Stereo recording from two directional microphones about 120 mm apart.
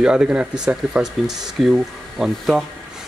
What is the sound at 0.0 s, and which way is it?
Speech, 5° right (ahead or behind).